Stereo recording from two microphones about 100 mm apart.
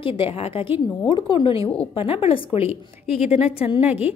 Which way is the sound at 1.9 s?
70° left (ahead or behind).